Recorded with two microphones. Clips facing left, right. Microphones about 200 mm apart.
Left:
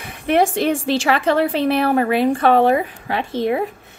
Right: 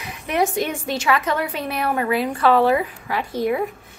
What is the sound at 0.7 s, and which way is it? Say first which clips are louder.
Speech: left 3 dB; 30° left (ahead or behind).